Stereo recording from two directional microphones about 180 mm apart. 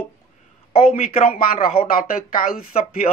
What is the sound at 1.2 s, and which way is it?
Speech, 50° left (ahead or behind).